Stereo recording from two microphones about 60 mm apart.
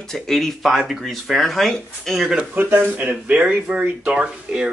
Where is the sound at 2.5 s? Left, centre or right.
Right.